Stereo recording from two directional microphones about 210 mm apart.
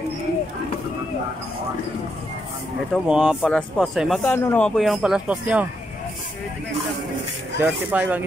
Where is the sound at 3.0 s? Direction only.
5° right (ahead or behind).